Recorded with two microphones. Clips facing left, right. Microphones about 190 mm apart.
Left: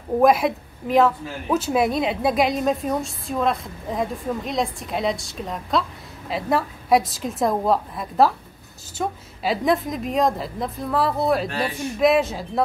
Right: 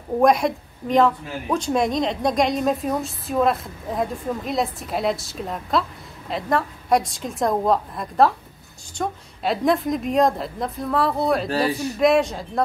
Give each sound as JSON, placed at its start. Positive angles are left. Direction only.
{"t": 0.2, "sound": "speech", "side_deg": 5}